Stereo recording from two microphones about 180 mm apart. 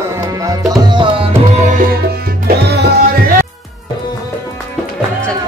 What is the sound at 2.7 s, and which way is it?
Music, 60° right (ahead or behind).